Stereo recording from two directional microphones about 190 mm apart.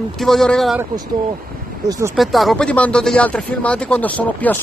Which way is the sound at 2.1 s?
Centre (ahead or behind).